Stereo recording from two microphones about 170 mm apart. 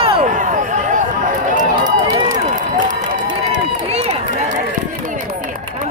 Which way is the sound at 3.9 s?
40° right (ahead or behind).